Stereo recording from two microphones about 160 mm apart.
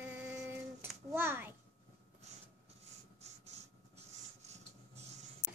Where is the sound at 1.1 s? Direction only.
15° right (ahead or behind).